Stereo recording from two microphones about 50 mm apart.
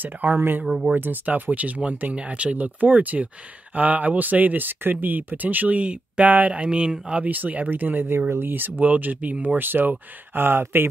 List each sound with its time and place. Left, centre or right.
0.0 s speech: right
7.2 s speech: right
9.6 s speech: right